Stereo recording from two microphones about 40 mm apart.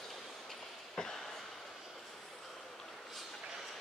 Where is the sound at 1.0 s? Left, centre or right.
Left.